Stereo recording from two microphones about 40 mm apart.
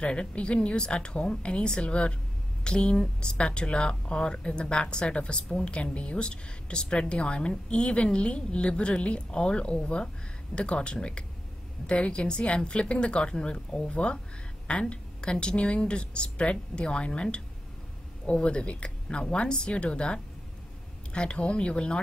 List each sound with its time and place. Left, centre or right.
0.0 s a woman's voice: left